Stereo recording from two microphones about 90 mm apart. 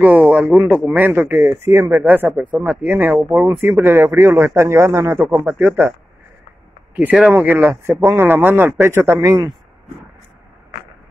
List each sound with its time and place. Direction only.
0.0 s speech: 20° right (ahead or behind)
5.3 s speech: 20° right (ahead or behind)
7.2 s speech: 20° right (ahead or behind); by 9.5 s 35° right (ahead or behind)